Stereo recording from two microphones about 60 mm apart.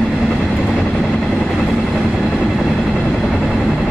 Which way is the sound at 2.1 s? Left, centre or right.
Centre.